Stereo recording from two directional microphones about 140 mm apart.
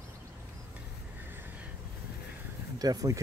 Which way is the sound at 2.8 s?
25° right (ahead or behind).